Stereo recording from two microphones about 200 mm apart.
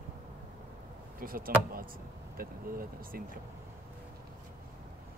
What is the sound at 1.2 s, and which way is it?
Speech, 45° right (ahead or behind).